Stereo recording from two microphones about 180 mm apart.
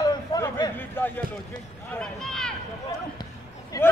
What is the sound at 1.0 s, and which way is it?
A man's voice, 10° left (ahead or behind).